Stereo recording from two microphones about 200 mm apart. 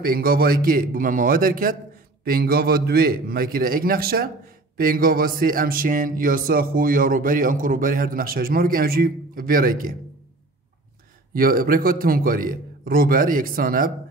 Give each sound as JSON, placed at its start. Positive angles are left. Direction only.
{"t": 0.0, "sound": "a man's voice", "side_deg": -50}
{"t": 11.3, "sound": "a man's voice", "side_deg": -45}